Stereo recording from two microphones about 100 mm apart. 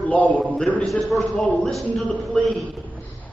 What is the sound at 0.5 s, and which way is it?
Speech, 10° left (ahead or behind).